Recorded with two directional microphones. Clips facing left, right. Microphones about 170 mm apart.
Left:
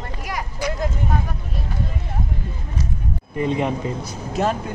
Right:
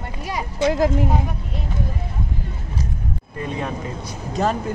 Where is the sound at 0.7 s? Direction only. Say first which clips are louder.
Right 7 dB; 90° right.